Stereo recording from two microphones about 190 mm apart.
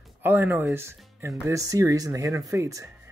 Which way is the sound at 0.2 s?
10° right (ahead or behind).